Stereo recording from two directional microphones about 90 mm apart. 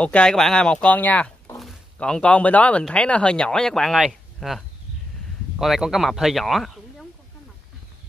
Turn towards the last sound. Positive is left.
turn(degrees=0)  # may be behind; listen again after turning